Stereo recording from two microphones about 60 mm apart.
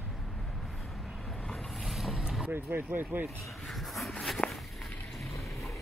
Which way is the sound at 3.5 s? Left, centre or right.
Centre.